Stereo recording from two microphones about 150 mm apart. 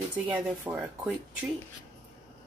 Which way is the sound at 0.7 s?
15° right (ahead or behind).